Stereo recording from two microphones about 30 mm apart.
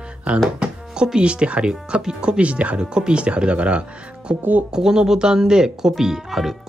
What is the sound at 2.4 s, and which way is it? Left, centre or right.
Speech, right.